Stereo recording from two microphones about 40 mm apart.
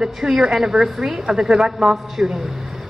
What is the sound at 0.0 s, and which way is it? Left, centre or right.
A woman's voice, centre.